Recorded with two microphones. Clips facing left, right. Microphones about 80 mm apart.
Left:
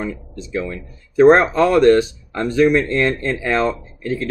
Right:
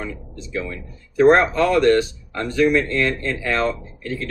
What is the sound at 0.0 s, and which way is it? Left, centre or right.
Speech, left.